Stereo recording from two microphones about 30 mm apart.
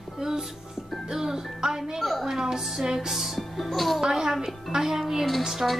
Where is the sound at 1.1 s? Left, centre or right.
Centre.